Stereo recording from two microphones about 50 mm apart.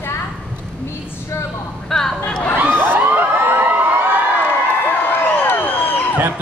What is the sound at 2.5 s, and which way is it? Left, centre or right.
Crowd, right.